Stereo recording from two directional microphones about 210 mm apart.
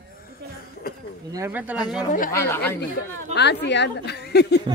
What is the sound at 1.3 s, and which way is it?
Speech, 10° right (ahead or behind).